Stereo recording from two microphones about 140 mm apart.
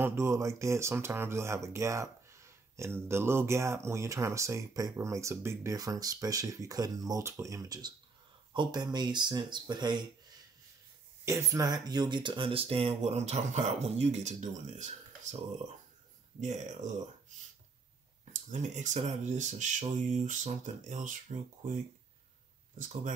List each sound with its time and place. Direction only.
0.0 s speech: 20° right (ahead or behind)
11.2 s speech: 20° right (ahead or behind); by 14.9 s 55° right (ahead or behind)
16.3 s speech: 60° right (ahead or behind)
18.5 s speech: 60° right (ahead or behind)